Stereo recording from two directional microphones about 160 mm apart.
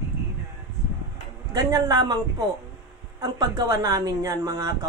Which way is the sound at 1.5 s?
25° right (ahead or behind).